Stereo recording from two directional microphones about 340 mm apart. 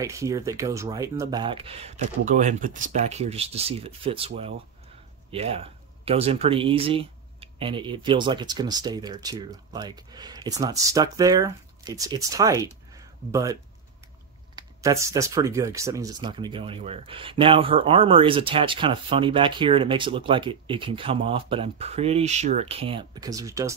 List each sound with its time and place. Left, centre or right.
0.0 s speech: centre